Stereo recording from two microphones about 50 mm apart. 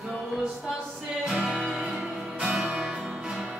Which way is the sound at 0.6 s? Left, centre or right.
Centre.